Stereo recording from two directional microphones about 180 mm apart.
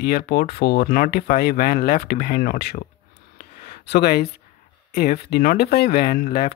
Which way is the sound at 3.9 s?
65° left (ahead or behind).